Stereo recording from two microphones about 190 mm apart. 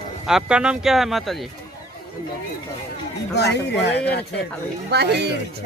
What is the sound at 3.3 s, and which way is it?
Speech, 65° left (ahead or behind).